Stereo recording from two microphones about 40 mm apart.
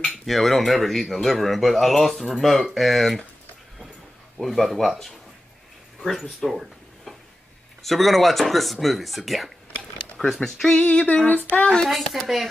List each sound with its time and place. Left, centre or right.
0.3 s speech: centre
4.4 s speech: centre
6.4 s a sound: centre
7.8 s speech: centre
10.4 s speech: centre
10.8 s female singing: left
11.6 s speech: left
11.9 s speech: centre